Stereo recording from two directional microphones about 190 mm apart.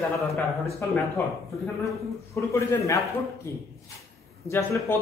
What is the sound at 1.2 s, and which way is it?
Speech, 10° left (ahead or behind).